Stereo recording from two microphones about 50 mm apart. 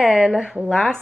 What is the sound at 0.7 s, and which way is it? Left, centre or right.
Speech, centre.